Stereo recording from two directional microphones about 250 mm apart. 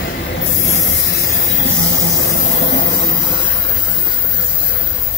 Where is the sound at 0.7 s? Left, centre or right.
Left.